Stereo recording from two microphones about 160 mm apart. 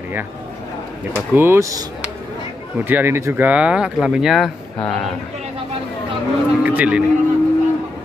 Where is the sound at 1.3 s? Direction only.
15° right (ahead or behind).